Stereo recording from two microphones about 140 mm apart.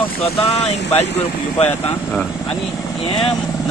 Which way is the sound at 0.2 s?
50° left (ahead or behind).